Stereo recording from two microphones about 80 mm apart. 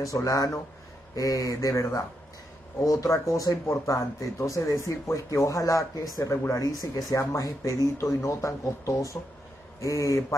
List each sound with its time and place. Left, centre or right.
0.0 s speech: left